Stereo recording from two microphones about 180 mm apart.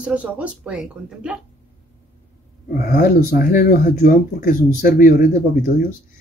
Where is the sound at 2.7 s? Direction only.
55° left (ahead or behind).